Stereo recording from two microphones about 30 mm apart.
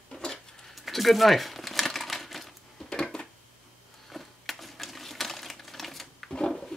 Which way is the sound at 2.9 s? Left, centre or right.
Left.